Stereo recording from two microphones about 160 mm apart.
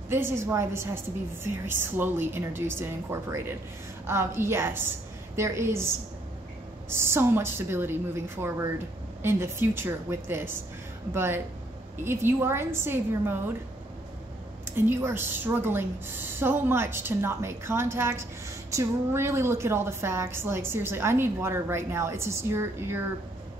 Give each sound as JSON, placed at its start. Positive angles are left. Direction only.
{"t": 0.1, "sound": "a woman's voice", "side_deg": -15}
{"t": 6.9, "sound": "a woman's voice", "side_deg": -15}
{"t": 14.6, "sound": "a woman's voice", "side_deg": -15}